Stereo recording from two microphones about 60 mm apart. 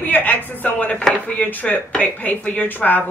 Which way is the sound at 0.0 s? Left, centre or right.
Left.